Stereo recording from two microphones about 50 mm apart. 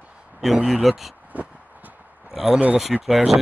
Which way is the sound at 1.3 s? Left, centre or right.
Right.